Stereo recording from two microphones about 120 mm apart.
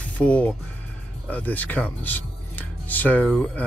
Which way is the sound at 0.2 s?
10° left (ahead or behind).